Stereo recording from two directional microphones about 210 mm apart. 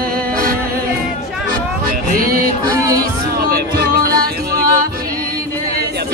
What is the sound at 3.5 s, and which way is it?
Music, 45° right (ahead or behind).